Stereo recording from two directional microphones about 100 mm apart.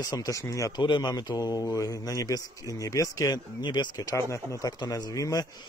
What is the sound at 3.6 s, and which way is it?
Speech, 50° left (ahead or behind).